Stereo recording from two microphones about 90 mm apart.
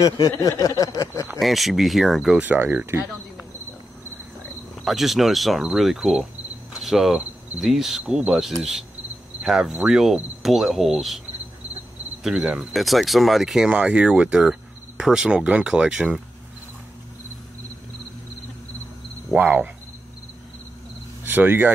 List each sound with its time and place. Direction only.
0.0 s speech: 40° left (ahead or behind)
1.4 s cricket: centre (ahead or behind)
2.3 s speech: 20° right (ahead or behind)
4.8 s cricket: centre (ahead or behind)
6.8 s speech: 5° right (ahead or behind)
9.4 s cricket: 10° right (ahead or behind)
12.2 s cricket: 10° right (ahead or behind)
12.7 s speech: centre (ahead or behind)
19.3 s speech: 20° right (ahead or behind)
21.2 s speech: 20° right (ahead or behind)